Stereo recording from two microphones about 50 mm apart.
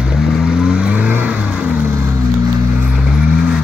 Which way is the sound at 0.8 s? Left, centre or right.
Right.